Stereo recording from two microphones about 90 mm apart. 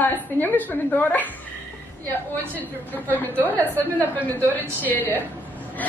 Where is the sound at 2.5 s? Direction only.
20° left (ahead or behind).